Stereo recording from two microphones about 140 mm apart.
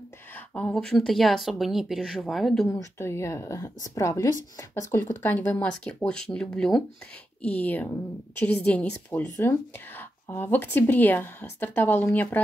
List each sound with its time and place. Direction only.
0.6 s speech: 5° left (ahead or behind)
2.7 s speech: 20° left (ahead or behind)
5.2 s a woman's voice: 15° left (ahead or behind)